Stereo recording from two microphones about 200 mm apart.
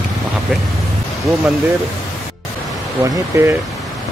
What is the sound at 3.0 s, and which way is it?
Speech, 15° right (ahead or behind).